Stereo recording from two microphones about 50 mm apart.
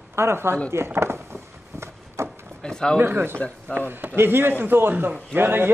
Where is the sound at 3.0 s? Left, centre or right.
Right.